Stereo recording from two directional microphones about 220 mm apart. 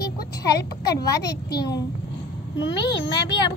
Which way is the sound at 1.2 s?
45° left (ahead or behind).